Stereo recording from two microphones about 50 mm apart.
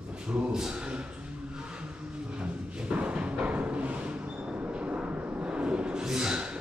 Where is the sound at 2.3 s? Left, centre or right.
Right.